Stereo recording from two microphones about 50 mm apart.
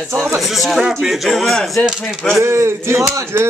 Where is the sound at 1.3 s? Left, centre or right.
Centre.